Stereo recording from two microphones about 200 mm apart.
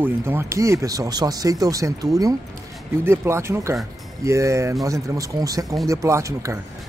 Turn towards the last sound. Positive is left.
turn(degrees=-15)  # may be behind; listen again after turning